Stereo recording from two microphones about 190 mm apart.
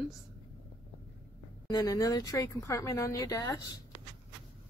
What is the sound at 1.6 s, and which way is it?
Speech, 20° left (ahead or behind).